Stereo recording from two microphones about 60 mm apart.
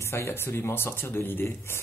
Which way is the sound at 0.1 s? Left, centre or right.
Left.